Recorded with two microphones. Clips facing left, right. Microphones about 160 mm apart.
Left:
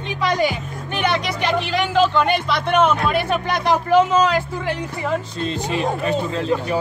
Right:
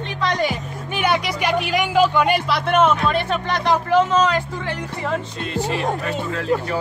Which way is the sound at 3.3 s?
10° left (ahead or behind).